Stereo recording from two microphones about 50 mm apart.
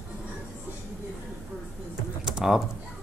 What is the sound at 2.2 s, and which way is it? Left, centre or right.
Typing, centre.